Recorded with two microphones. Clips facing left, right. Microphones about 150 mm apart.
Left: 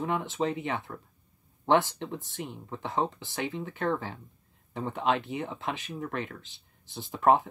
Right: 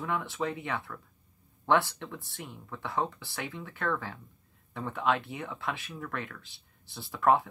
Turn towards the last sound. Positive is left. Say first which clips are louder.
# left 2 dB
turn(degrees=20)  # may be behind; listen again after turning